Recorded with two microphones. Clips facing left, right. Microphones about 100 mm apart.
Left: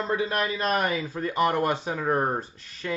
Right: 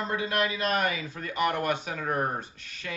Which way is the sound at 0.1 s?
35° left (ahead or behind).